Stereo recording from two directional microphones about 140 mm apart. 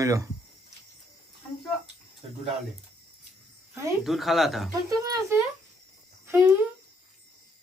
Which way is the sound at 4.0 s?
Centre (ahead or behind).